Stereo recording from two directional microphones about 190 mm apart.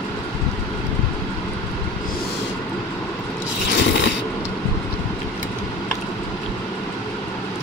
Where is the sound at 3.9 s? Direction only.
70° left (ahead or behind).